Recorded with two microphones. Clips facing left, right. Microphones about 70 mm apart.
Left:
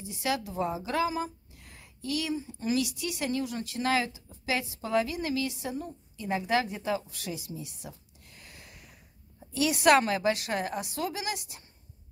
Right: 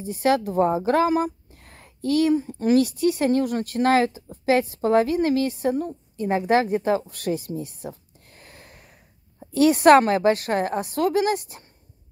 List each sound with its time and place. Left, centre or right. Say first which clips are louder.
0.0 s speech: right 10 dB; right